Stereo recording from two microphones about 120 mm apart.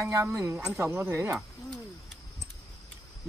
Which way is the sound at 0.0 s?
25° right (ahead or behind).